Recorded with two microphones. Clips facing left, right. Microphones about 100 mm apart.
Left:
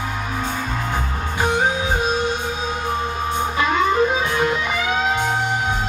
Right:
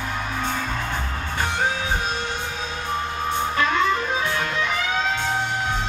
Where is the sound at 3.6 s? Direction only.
15° left (ahead or behind).